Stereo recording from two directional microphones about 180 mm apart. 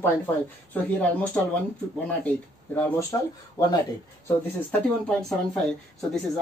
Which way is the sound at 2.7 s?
15° left (ahead or behind).